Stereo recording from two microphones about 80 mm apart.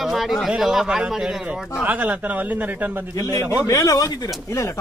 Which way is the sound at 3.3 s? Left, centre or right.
Left.